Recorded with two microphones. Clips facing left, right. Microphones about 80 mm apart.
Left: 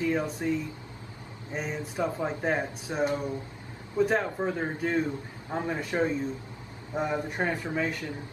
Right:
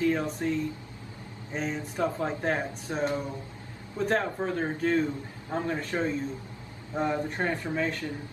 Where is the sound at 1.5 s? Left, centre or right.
Centre.